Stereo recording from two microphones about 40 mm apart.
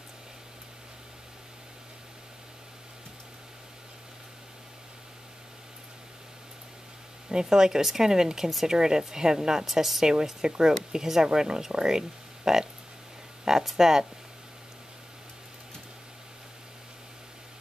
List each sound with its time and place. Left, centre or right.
7.2 s a woman's voice: centre